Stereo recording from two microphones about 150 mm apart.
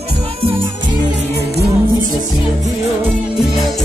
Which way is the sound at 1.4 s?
90° right.